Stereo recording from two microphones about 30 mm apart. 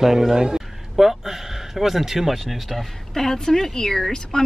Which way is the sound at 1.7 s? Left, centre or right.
Centre.